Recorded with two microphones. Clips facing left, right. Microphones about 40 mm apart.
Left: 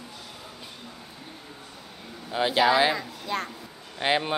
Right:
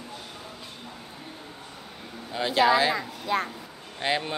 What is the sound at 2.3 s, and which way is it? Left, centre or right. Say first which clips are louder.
Speech: left 2 dB; centre.